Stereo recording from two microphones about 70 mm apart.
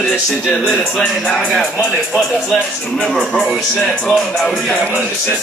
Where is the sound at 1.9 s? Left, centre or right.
Centre.